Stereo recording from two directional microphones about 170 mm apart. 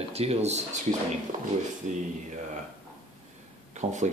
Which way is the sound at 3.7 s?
45° right (ahead or behind).